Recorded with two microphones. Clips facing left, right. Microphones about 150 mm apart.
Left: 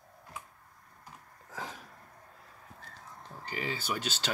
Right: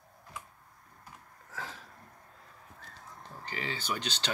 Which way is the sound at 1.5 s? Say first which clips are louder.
Left 2 dB; 15° left (ahead or behind).